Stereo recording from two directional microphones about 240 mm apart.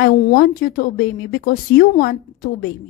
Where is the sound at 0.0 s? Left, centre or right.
Left.